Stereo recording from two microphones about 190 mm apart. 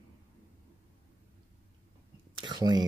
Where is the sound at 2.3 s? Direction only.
25° right (ahead or behind).